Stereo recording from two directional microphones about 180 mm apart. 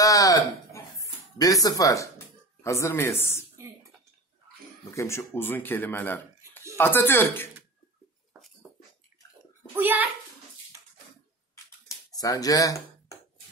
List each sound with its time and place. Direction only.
0.0 s a sound: 20° left (ahead or behind)
2.6 s speech: 15° left (ahead or behind)
4.9 s speech: 15° left (ahead or behind)
9.8 s a child's voice: 10° right (ahead or behind)
10.7 s bathtub: 20° right (ahead or behind)
12.1 s speech: 20° left (ahead or behind)